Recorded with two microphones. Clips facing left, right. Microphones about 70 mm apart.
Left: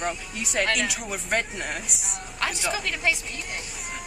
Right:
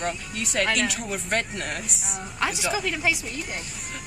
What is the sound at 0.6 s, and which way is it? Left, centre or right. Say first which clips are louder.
Speech: right 2 dB; centre.